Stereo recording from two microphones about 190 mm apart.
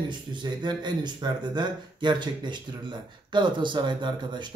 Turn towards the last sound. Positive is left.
turn(degrees=-25)  # may be behind; listen again after turning